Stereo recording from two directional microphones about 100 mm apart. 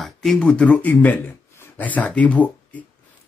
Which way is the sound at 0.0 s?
5° left (ahead or behind).